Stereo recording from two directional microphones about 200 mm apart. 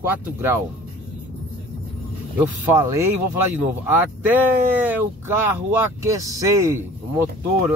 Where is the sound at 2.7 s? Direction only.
15° right (ahead or behind).